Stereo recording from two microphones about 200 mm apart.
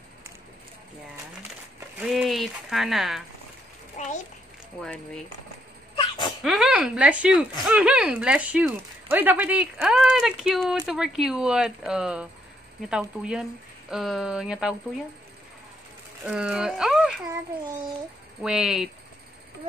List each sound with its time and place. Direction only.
2.0 s speech: 5° right (ahead or behind)
4.0 s a child's voice: 40° left (ahead or behind)
4.8 s speech: 5° left (ahead or behind)
5.9 s music: 25° left (ahead or behind)
6.4 s speech: 5° right (ahead or behind)
16.3 s speech: 5° right (ahead or behind)
18.4 s speech: 5° right (ahead or behind)